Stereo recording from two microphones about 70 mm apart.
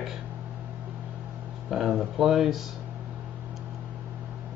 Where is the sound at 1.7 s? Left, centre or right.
Centre.